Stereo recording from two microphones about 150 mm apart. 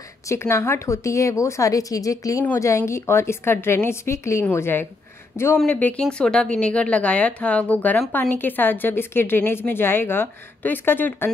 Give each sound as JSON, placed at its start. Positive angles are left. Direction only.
{"t": 0.3, "sound": "a woman's voice", "side_deg": 20}